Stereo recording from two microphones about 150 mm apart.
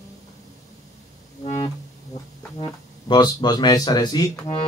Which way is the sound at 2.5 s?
30° left (ahead or behind).